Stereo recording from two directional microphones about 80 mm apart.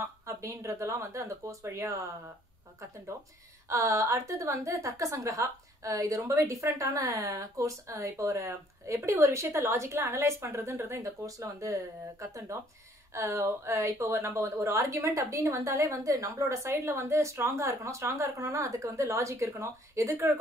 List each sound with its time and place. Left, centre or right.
0.0 s a woman's voice: right
3.6 s a woman's voice: right
13.1 s a woman's voice: right